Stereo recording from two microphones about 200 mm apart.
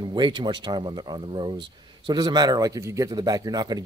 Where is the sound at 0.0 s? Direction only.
25° right (ahead or behind).